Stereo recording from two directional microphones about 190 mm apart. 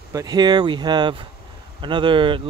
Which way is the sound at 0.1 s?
20° right (ahead or behind).